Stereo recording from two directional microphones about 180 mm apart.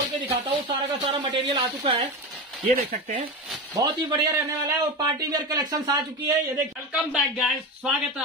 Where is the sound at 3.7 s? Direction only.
20° right (ahead or behind).